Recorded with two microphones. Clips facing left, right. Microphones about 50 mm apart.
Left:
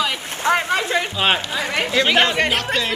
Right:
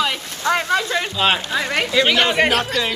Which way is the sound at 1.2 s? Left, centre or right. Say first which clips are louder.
Right 3 dB; centre.